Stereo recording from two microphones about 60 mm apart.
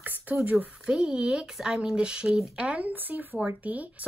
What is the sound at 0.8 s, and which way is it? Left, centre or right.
Speech, centre.